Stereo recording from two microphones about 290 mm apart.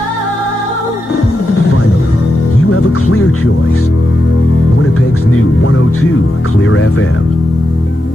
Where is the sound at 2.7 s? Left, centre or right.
Left.